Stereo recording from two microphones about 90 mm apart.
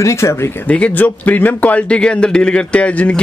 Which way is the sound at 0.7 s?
15° left (ahead or behind).